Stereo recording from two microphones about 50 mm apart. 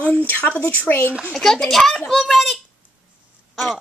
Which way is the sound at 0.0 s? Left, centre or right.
Left.